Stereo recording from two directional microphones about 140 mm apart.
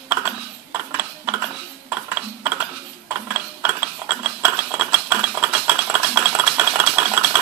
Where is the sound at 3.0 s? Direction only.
10° right (ahead or behind).